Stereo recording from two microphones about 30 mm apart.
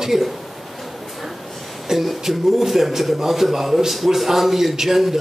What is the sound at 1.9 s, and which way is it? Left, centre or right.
A man's voice, centre.